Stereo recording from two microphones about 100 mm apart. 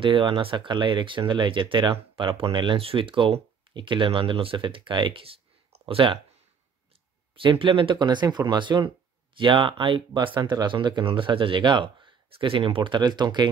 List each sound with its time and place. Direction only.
0.0 s speech: 55° right (ahead or behind)
7.3 s speech: 60° right (ahead or behind)